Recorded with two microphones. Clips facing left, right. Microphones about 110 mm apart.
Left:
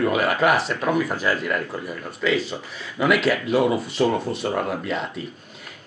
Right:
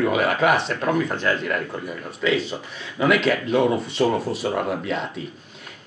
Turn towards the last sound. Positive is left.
turn(degrees=0)  # may be behind; listen again after turning